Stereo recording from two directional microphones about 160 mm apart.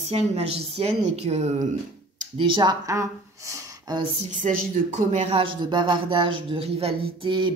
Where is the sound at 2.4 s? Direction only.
25° right (ahead or behind).